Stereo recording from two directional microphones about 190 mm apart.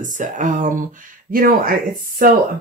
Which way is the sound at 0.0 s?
40° right (ahead or behind).